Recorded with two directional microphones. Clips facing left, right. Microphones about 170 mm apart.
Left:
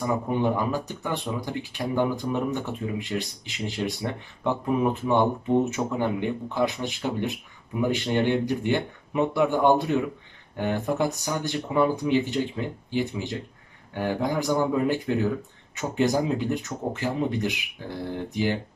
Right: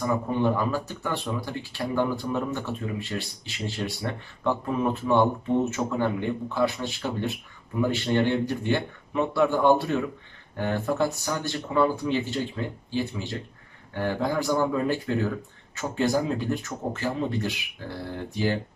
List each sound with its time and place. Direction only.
0.3 s speech: 15° left (ahead or behind)